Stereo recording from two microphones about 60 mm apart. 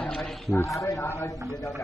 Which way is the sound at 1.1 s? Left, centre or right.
Left.